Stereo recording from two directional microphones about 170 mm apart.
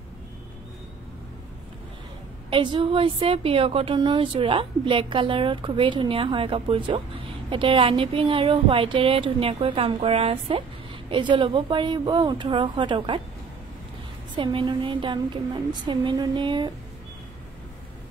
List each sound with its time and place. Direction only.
2.5 s a woman's voice: 30° right (ahead or behind)
14.3 s speech: 30° right (ahead or behind)